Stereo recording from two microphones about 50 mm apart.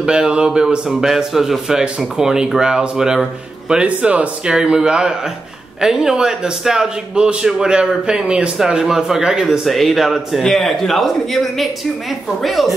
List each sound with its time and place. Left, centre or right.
0.0 s a man's voice: centre
0.8 s a man's voice: centre
3.8 s speech: right
4.5 s a man's voice: centre
9.7 s a man's voice: centre